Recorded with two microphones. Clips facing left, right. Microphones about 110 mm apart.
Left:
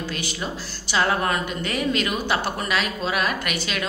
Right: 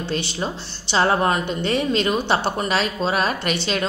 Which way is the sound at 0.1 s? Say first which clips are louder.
Right 4 dB; 30° right (ahead or behind).